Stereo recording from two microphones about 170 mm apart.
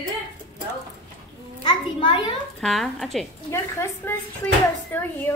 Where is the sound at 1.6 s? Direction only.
30° left (ahead or behind).